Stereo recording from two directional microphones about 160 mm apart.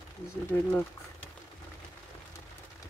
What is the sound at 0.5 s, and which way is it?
Speech, 10° left (ahead or behind).